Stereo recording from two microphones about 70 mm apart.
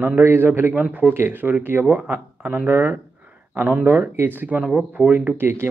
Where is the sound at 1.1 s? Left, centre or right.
Right.